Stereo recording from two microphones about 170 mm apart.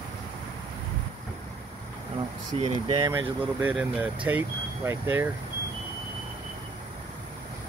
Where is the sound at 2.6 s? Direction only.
30° right (ahead or behind).